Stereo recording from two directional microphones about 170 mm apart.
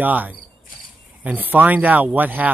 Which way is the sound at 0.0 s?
10° right (ahead or behind).